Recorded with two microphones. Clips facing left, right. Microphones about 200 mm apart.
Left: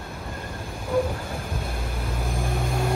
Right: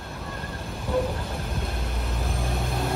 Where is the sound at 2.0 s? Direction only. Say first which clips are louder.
Left 3 dB; centre (ahead or behind).